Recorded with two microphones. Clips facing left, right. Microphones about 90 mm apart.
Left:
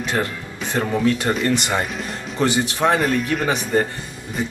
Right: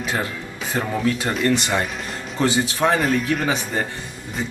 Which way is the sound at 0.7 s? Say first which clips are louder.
Left 3 dB; 5° right (ahead or behind).